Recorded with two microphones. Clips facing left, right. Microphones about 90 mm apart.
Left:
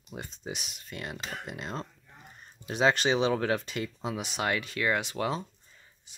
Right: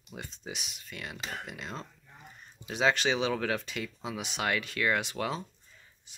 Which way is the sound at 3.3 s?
30° left (ahead or behind).